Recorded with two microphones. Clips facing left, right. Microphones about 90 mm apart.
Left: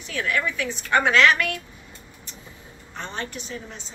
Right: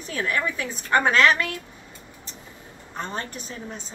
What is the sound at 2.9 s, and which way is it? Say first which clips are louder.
Speech: right 1 dB; 40° right (ahead or behind).